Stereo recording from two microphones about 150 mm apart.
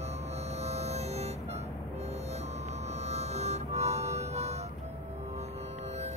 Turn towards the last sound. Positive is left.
turn(degrees=-45)  # may be behind; listen again after turning